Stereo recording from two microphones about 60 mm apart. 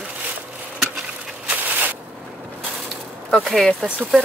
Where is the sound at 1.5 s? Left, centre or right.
Right.